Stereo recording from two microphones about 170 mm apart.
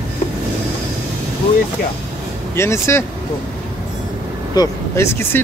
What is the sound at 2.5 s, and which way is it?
Speech, 15° left (ahead or behind).